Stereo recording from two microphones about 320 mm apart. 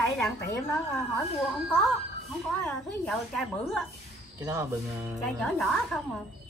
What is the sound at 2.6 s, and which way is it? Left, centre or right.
Speech, centre.